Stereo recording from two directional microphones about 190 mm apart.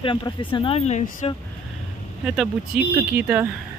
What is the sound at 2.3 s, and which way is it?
Speech, 5° right (ahead or behind).